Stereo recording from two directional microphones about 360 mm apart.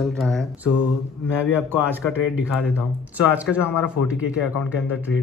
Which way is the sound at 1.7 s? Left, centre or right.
Centre.